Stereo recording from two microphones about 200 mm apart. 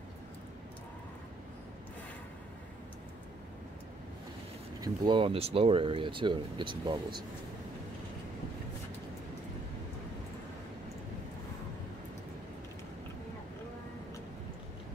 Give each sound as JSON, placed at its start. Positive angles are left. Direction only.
{"t": 4.7, "sound": "speech", "side_deg": -20}